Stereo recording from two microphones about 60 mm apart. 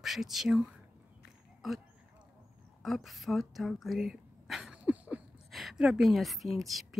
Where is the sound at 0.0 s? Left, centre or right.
Centre.